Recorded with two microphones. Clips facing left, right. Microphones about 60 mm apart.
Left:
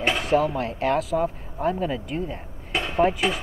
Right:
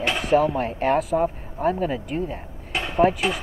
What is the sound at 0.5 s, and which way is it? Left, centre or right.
Speech, centre.